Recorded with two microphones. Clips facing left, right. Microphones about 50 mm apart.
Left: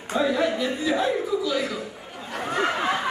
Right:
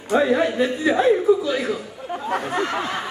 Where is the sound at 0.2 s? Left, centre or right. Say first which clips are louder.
Right 1 dB; right.